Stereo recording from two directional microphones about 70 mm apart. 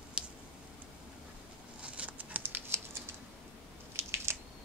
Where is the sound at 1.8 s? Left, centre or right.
Centre.